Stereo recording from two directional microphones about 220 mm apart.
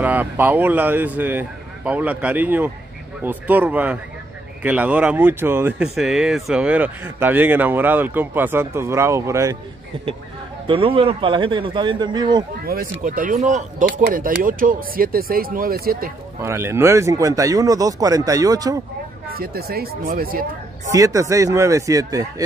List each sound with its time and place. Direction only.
0.0 s speech: 10° right (ahead or behind)
10.7 s a man's voice: 25° right (ahead or behind)
12.6 s speech: 40° right (ahead or behind)
16.3 s speech: 10° right (ahead or behind)
19.3 s speech: 45° right (ahead or behind)
20.9 s speech: 15° right (ahead or behind)